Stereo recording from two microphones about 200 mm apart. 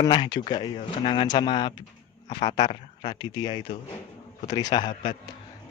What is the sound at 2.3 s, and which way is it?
Speech, 35° left (ahead or behind).